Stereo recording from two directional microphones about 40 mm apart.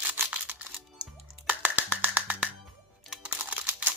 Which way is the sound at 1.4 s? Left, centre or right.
Right.